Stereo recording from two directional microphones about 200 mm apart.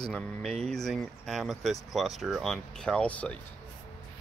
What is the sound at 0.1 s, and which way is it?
Speech, 5° left (ahead or behind).